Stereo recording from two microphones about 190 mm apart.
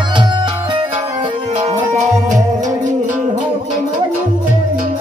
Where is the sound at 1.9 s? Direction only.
40° right (ahead or behind).